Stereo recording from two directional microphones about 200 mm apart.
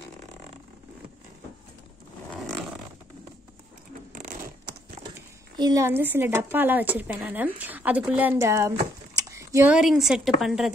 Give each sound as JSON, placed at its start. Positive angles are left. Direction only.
{"t": 4.1, "sound": "zipper", "side_deg": -40}
{"t": 5.6, "sound": "a woman's voice", "side_deg": -15}